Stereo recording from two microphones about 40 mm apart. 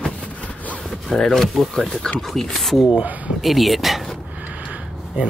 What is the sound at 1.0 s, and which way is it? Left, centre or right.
Speech, centre.